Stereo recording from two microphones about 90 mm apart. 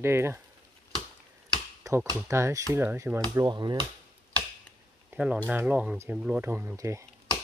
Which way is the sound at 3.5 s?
55° right (ahead or behind).